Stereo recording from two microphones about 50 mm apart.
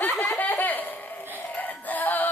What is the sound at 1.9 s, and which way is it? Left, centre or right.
Synthetic singing, left.